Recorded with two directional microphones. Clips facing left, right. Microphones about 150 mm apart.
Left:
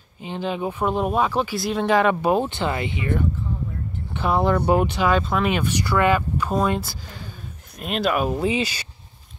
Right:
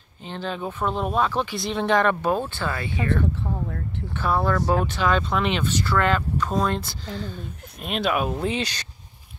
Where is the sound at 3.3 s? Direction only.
75° right (ahead or behind).